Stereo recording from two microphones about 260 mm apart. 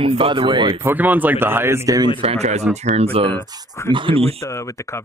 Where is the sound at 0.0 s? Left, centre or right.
Right.